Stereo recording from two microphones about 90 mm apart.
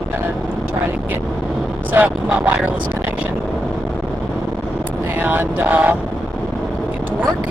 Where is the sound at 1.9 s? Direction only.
15° right (ahead or behind).